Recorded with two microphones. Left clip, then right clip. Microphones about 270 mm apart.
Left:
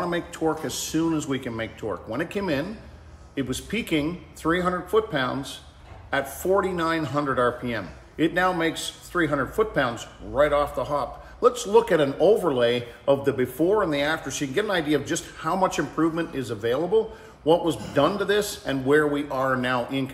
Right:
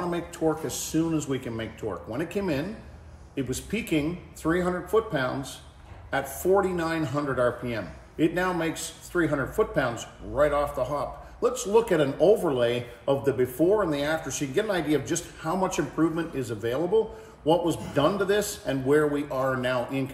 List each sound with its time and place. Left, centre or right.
0.0 s speech: centre
6.4 s speech: centre